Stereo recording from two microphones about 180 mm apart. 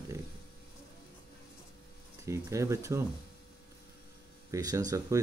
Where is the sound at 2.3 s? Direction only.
15° right (ahead or behind).